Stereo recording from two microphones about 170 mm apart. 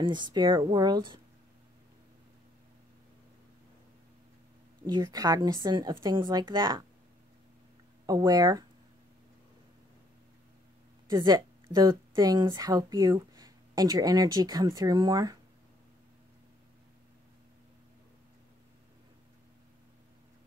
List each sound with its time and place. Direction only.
0.0 s speech: 25° right (ahead or behind)
4.8 s speech: 25° right (ahead or behind)
8.1 s speech: 20° right (ahead or behind)
11.1 s a woman's voice: 20° right (ahead or behind)